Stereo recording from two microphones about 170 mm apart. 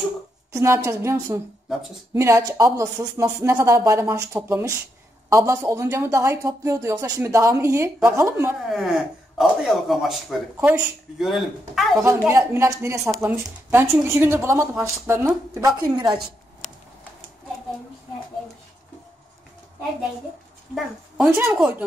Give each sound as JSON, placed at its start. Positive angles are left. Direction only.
{"t": 0.5, "sound": "a woman's voice", "side_deg": -15}
{"t": 8.6, "sound": "speech", "side_deg": 0}
{"t": 12.3, "sound": "a woman's voice", "side_deg": -15}
{"t": 20.7, "sound": "a woman's voice", "side_deg": -10}